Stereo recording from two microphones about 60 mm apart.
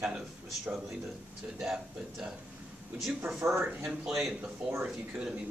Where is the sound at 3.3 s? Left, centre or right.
Right.